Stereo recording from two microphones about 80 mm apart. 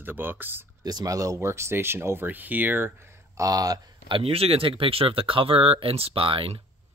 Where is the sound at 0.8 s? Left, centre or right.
Right.